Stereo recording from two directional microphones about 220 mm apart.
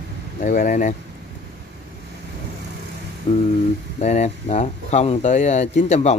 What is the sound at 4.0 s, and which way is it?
Speech, 30° left (ahead or behind).